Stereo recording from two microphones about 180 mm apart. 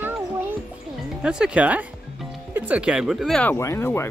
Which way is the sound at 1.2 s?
5° right (ahead or behind).